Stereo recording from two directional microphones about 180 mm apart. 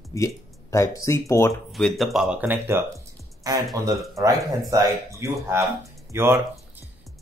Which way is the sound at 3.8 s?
15° right (ahead or behind).